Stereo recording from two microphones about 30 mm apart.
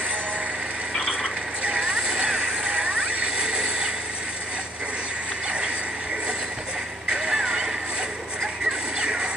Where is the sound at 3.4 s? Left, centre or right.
Right.